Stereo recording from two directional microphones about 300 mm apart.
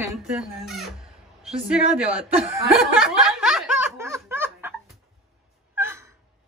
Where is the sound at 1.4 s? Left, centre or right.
Centre.